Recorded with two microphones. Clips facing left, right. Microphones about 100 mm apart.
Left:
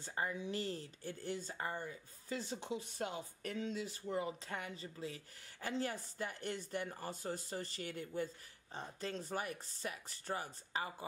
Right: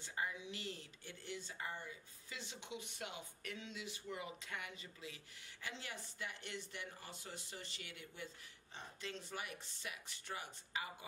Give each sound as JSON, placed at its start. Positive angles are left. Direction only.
{"t": 0.0, "sound": "speech", "side_deg": 40}